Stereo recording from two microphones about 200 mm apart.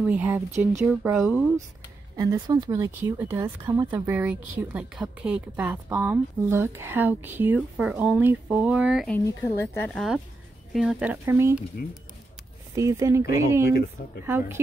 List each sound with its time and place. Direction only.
0.0 s speech: 5° right (ahead or behind)
2.1 s speech: 15° right (ahead or behind)
12.7 s speech: 15° right (ahead or behind)
13.7 s speech: 50° left (ahead or behind)
14.2 s speech: 10° right (ahead or behind)